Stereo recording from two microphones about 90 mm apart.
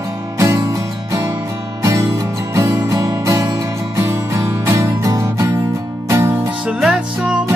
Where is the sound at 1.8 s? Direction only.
35° right (ahead or behind).